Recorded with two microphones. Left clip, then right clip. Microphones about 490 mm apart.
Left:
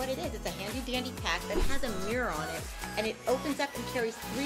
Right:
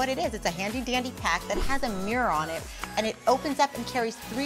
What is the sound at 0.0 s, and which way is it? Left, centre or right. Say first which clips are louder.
Speech: right 7 dB; right.